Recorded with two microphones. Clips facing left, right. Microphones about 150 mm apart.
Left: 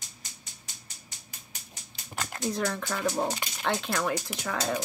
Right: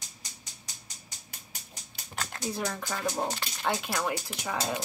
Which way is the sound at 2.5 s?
5° right (ahead or behind).